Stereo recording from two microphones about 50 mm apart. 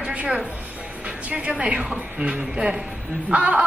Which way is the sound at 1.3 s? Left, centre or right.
Right.